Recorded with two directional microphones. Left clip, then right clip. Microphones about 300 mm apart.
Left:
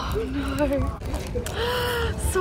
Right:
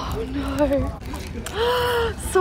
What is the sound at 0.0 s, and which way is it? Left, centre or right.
Speech, centre.